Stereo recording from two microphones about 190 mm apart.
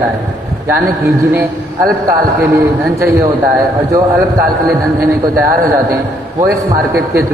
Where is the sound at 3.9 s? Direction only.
20° right (ahead or behind).